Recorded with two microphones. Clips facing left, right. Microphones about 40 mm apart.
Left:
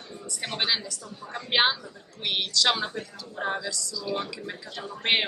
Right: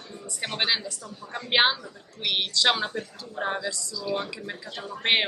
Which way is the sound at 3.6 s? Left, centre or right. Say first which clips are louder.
Right 1 dB; right.